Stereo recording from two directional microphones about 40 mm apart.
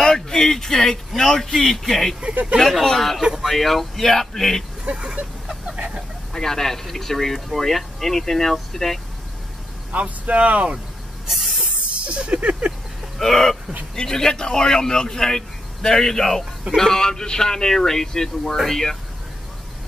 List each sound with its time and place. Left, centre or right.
0.0 s speech: centre
4.9 s vehicle: right
6.3 s speech: centre
9.9 s speech: right
11.2 s spray: centre
11.9 s a sound: right
13.2 s speech: centre